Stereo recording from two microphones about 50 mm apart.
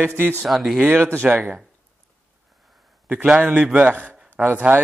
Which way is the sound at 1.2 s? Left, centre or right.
Centre.